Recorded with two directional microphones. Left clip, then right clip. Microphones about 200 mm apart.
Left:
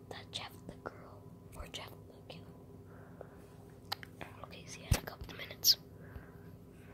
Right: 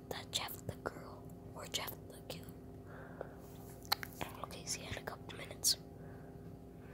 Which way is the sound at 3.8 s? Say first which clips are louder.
Right 5 dB; 5° right (ahead or behind).